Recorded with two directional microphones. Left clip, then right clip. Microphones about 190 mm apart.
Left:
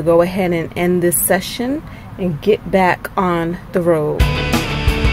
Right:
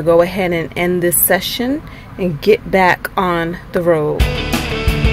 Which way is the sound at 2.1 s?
5° right (ahead or behind).